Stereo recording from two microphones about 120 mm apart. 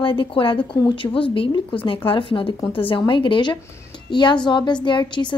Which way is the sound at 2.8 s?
45° left (ahead or behind).